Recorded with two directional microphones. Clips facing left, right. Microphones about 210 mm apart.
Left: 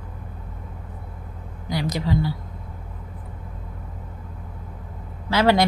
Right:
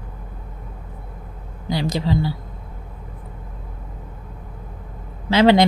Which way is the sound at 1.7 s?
30° right (ahead or behind).